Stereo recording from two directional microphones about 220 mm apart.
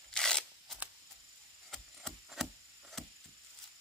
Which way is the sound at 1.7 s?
Centre (ahead or behind).